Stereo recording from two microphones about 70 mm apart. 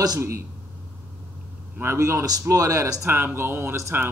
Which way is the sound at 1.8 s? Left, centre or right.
Right.